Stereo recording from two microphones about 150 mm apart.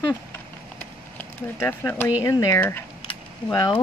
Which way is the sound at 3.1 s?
30° left (ahead or behind).